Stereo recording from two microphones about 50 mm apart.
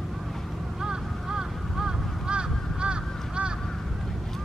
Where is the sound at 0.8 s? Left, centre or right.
Centre.